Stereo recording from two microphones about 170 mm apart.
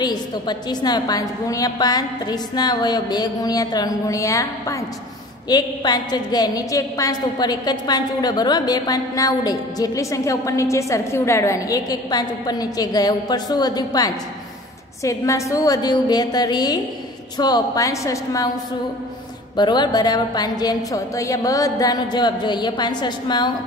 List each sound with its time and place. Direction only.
0.0 s a woman's voice: 25° left (ahead or behind)
19.5 s a woman's voice: 25° left (ahead or behind)